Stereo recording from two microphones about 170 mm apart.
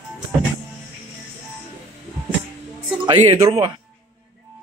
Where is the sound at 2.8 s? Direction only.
25° right (ahead or behind).